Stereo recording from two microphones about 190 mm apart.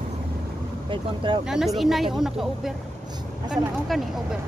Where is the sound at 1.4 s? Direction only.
Centre (ahead or behind).